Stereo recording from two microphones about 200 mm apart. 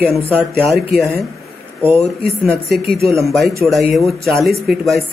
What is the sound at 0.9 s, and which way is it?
Speech, 50° right (ahead or behind).